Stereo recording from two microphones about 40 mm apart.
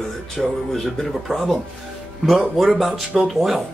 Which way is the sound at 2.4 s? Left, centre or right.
Centre.